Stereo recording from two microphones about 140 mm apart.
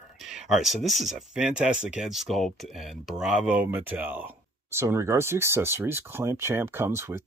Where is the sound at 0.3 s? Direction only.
5° right (ahead or behind).